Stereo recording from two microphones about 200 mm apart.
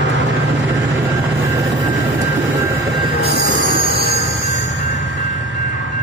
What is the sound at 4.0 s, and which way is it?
Music, 65° right (ahead or behind).